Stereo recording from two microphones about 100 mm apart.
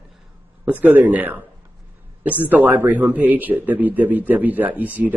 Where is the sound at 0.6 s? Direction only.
15° right (ahead or behind).